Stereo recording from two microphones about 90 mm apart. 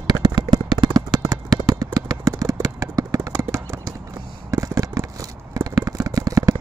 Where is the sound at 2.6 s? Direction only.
40° right (ahead or behind).